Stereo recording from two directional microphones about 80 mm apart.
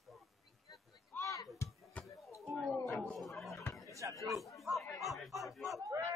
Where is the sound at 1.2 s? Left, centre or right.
Left.